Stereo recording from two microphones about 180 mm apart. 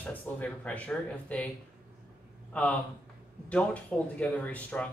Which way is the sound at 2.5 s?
5° left (ahead or behind).